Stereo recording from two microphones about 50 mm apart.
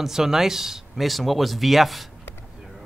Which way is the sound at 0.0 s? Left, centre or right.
Centre.